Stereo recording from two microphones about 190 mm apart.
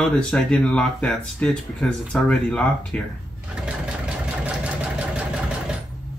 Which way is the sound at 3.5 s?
5° right (ahead or behind).